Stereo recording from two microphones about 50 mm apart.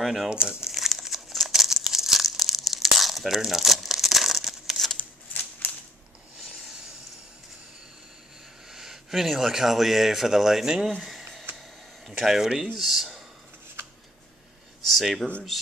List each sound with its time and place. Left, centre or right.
0.0 s speech: centre
0.3 s crumpling: centre
4.9 s shuffling cards: left
8.6 s speech: centre
11.1 s a sound: centre
12.2 s speech: centre
14.9 s speech: centre